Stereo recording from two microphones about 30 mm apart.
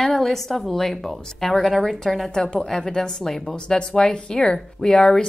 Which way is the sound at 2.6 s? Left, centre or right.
Left.